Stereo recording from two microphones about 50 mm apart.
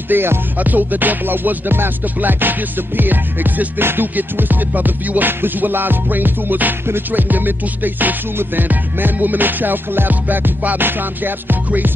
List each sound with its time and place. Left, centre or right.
0.1 s music: right
0.6 s music: right